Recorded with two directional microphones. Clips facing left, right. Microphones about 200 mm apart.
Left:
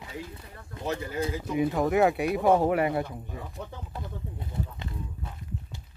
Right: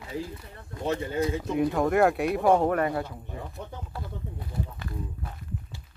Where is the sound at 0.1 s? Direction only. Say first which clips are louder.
Right 7 dB; 30° right (ahead or behind).